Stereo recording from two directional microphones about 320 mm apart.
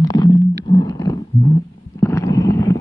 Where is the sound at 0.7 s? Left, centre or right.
Centre.